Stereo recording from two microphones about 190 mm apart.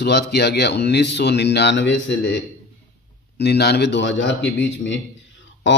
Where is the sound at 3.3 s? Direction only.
60° left (ahead or behind).